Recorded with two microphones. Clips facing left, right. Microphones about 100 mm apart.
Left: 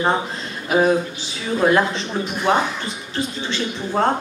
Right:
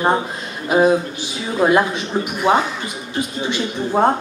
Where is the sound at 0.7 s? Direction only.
15° right (ahead or behind).